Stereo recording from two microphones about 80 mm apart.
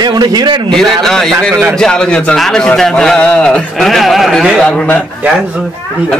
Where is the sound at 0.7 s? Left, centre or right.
Centre.